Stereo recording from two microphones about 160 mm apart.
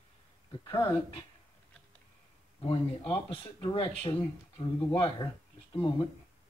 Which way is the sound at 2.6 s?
35° left (ahead or behind).